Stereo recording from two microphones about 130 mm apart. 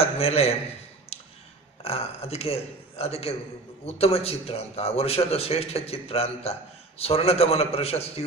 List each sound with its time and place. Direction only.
0.0 s a man's voice: 50° left (ahead or behind)
1.1 s a sound: 50° left (ahead or behind)
1.8 s a man's voice: 50° left (ahead or behind)